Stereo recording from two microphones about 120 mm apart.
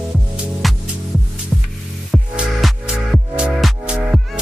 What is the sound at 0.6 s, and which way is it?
Music, centre (ahead or behind).